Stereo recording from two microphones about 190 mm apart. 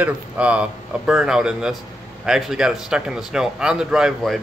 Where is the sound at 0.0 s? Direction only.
5° right (ahead or behind).